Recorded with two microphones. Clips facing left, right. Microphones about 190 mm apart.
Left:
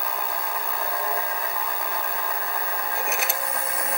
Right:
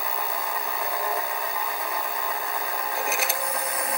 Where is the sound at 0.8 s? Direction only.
Centre (ahead or behind).